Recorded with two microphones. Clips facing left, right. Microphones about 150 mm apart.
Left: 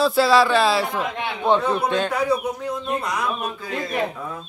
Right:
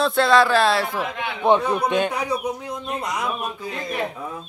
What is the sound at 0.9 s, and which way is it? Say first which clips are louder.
A man's voice: left 1 dB; 15° right (ahead or behind).